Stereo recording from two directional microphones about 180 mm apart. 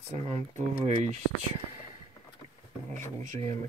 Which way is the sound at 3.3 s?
40° right (ahead or behind).